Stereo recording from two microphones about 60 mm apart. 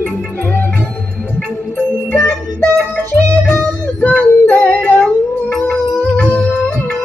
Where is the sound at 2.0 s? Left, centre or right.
Left.